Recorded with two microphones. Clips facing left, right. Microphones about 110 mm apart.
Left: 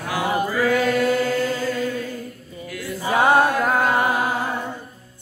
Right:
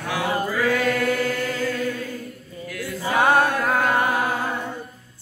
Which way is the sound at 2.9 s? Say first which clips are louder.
Left 2 dB; 15° left (ahead or behind).